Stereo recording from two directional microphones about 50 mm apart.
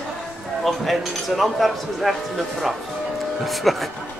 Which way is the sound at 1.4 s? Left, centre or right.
Centre.